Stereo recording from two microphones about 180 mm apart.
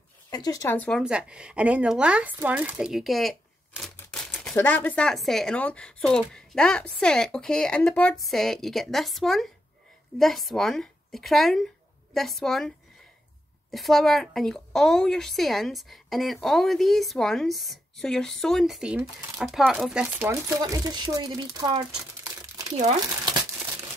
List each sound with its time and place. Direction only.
0.3 s speech: 20° left (ahead or behind)
1.0 s a woman's voice: 5° right (ahead or behind); by 21.8 s 20° right (ahead or behind)